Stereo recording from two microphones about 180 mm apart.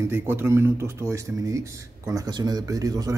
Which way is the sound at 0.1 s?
15° right (ahead or behind).